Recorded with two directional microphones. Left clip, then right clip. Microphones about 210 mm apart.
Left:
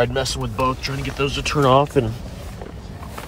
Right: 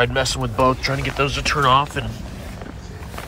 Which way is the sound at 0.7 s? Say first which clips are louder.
Right 4 dB; 5° left (ahead or behind).